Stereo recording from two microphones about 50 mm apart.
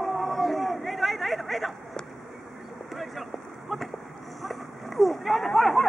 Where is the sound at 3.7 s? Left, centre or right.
Centre.